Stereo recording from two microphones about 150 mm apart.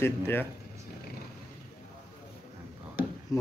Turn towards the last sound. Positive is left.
turn(degrees=20)  # may be behind; listen again after turning